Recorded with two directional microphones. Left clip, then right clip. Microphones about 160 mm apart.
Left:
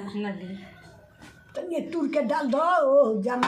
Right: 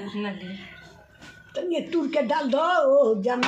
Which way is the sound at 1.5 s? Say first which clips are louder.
Right 4 dB; 30° right (ahead or behind).